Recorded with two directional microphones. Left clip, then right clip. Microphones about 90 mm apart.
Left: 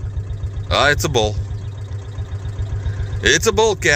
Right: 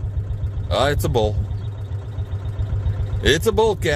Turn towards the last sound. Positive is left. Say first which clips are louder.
# left 3 dB
turn(degrees=-20)  # may be behind; listen again after turning